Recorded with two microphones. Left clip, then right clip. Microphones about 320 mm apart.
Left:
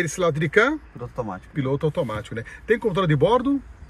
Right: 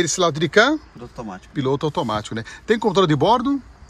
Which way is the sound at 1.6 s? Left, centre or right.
Centre.